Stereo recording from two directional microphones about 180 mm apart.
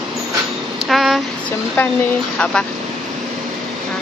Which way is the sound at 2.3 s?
5° left (ahead or behind).